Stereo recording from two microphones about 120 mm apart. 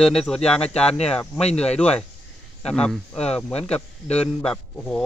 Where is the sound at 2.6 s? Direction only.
5° left (ahead or behind).